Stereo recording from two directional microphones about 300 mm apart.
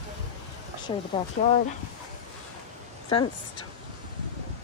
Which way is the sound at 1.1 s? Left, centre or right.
Centre.